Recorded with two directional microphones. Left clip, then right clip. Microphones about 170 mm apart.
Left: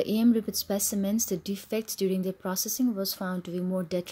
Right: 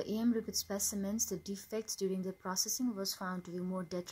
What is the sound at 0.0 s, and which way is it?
Speech, 30° left (ahead or behind).